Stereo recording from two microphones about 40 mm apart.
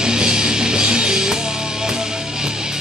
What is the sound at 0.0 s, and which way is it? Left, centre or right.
Music, centre.